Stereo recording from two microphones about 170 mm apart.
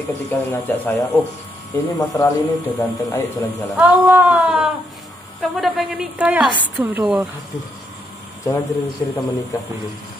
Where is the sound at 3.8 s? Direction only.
10° right (ahead or behind).